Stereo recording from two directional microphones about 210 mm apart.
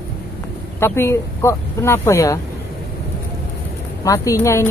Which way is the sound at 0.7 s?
10° left (ahead or behind).